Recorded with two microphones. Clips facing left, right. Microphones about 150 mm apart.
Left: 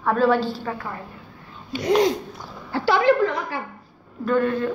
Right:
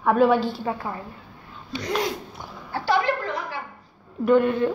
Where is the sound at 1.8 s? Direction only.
20° left (ahead or behind).